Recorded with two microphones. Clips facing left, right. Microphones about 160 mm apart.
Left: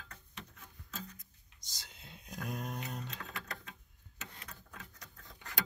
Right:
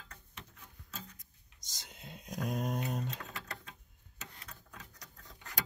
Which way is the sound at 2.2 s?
15° right (ahead or behind).